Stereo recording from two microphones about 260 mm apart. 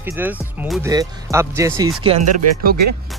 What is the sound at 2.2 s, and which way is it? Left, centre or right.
Speech, right.